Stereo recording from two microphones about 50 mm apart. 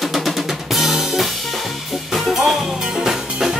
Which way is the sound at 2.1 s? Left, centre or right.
Centre.